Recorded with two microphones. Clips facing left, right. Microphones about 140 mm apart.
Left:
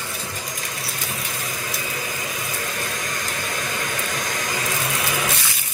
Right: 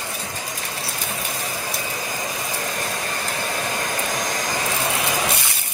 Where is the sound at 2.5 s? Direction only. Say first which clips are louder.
Right 2 dB; 30° right (ahead or behind).